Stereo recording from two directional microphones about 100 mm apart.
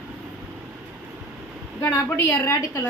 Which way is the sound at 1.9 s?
25° left (ahead or behind).